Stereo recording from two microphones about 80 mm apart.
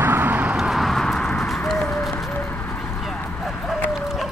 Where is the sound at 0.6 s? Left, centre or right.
Centre.